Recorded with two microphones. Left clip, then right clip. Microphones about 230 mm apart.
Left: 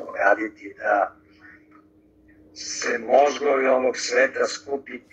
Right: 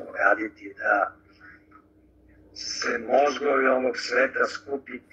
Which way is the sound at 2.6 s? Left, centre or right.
Left.